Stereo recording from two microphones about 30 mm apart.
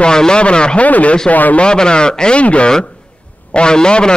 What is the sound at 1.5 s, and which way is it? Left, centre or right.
Speech, left.